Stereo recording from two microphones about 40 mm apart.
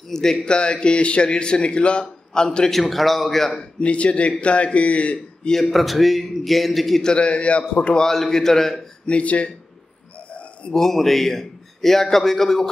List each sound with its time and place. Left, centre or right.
0.1 s a man's voice: centre
0.5 s speech: left
2.8 s a man's voice: centre
3.8 s a man's voice: left
5.6 s a man's voice: centre
7.2 s speech: left
8.0 s a man's voice: centre
9.0 s speech: left
10.7 s a man's voice: centre